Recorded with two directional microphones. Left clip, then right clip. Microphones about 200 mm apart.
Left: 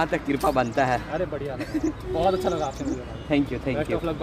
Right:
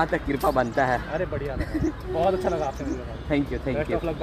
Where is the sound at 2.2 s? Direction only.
20° left (ahead or behind).